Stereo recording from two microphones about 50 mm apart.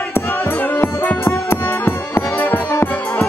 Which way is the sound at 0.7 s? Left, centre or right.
Left.